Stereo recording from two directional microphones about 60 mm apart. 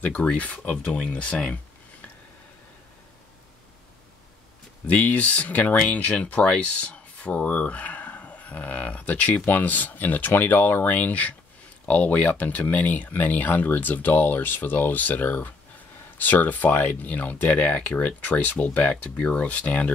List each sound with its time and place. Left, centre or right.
0.0 s speech: left
4.8 s speech: left